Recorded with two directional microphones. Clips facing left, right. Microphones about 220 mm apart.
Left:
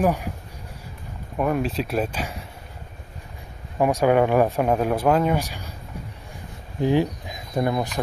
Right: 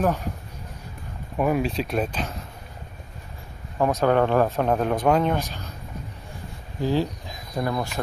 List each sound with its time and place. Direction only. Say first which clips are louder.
0.0 s speech: left 2 dB; 10° left (ahead or behind)
1.4 s speech: even; centre (ahead or behind)
3.7 s speech: left 2 dB; 10° left (ahead or behind)
6.8 s speech: left 3 dB; 20° left (ahead or behind)